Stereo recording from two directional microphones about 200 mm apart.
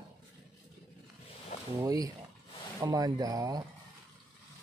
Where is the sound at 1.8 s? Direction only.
15° right (ahead or behind).